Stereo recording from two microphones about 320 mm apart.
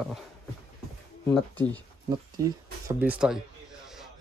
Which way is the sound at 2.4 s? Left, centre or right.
Centre.